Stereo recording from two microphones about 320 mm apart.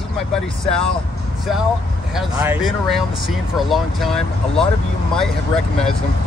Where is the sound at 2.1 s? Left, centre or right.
Centre.